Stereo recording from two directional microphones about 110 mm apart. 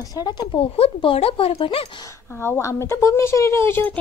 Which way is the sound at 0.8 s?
60° left (ahead or behind).